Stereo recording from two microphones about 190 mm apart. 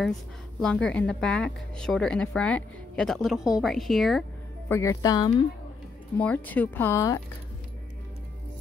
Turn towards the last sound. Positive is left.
turn(degrees=15)  # may be behind; listen again after turning